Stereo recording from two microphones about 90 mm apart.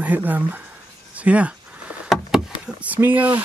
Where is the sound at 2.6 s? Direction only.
15° right (ahead or behind).